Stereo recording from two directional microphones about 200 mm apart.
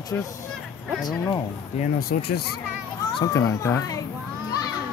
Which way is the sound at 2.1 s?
55° left (ahead or behind).